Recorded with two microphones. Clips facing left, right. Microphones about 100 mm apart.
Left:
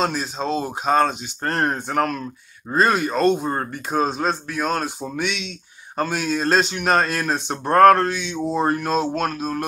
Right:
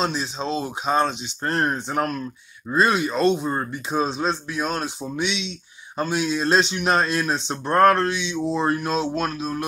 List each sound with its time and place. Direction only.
0.0 s speech: 50° left (ahead or behind)
2.7 s speech: 45° left (ahead or behind)